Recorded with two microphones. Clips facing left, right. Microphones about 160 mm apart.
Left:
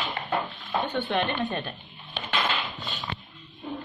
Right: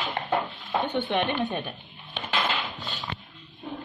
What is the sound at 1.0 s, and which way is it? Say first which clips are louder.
Speech: even; 15° right (ahead or behind).